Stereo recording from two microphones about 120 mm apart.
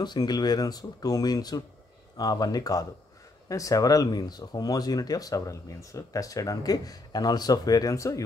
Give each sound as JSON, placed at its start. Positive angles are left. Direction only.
{"t": 0.0, "sound": "speech", "side_deg": 35}